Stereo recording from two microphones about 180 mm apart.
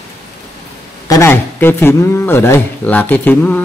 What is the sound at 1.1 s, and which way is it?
Speech, 15° left (ahead or behind).